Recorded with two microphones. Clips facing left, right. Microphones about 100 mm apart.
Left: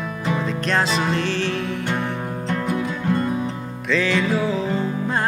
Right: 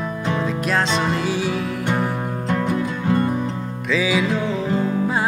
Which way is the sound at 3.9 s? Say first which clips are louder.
Even; 5° right (ahead or behind).